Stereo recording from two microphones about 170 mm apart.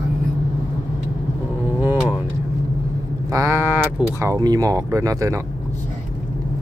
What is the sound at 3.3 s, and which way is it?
Vehicle, 15° right (ahead or behind).